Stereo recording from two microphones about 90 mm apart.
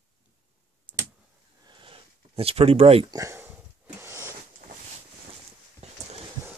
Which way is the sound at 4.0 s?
30° right (ahead or behind).